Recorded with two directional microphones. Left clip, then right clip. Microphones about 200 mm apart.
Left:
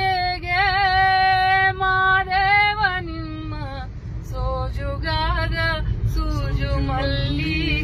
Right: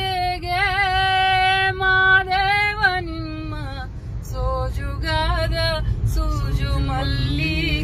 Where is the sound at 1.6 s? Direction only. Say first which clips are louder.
Right 1 dB; 25° right (ahead or behind).